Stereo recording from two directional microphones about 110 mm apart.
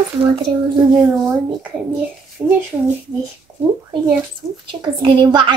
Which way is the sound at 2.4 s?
25° right (ahead or behind).